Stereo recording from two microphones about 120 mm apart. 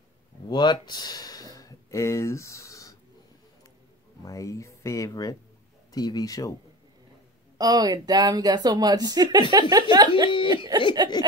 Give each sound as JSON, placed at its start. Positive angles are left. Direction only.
{"t": 0.5, "sound": "speech", "side_deg": 40}
{"t": 4.2, "sound": "speech", "side_deg": 25}
{"t": 7.5, "sound": "a woman's voice", "side_deg": -30}